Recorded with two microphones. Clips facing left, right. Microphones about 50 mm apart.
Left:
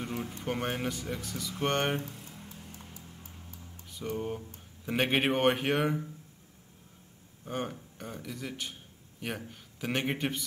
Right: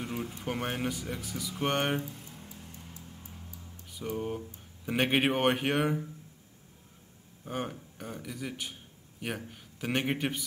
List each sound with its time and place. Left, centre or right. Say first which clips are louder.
0.0 s a sound: even; centre
0.4 s speech: left 1 dB; centre
2.0 s music: even; left
3.9 s a sound: even; centre
4.8 s speech: right 1 dB; centre
7.4 s speech: even; centre